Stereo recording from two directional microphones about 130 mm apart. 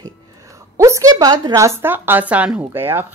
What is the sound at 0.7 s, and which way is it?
Speech, 20° right (ahead or behind).